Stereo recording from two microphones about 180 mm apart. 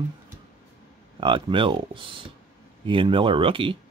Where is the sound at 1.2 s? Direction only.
25° right (ahead or behind).